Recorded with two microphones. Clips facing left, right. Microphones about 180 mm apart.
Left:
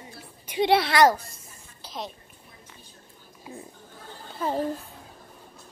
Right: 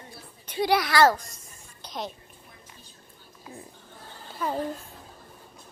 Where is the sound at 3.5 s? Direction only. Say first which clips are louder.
Left 2 dB; 25° left (ahead or behind).